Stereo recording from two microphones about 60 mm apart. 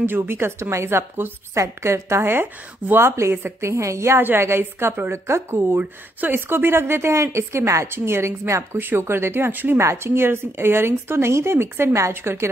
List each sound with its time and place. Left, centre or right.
0.0 s speech: right
4.2 s speech: right
5.8 s speech: right
8.7 s speech: right
9.8 s speech: right